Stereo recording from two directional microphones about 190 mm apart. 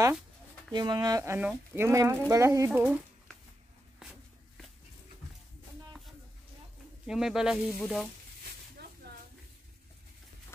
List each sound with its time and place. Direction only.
0.7 s speech: 20° right (ahead or behind)
4.0 s walk: centre (ahead or behind)
7.1 s speech: 5° right (ahead or behind)
8.7 s a sound: 55° right (ahead or behind)